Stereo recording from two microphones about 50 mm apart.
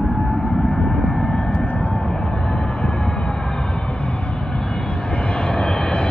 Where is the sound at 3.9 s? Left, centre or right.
Left.